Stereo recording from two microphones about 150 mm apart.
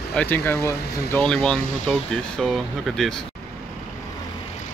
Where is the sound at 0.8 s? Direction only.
90° left.